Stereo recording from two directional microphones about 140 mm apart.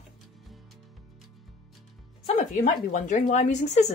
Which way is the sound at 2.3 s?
60° left (ahead or behind).